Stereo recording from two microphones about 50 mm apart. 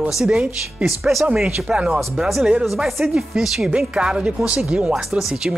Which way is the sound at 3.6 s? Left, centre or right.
Centre.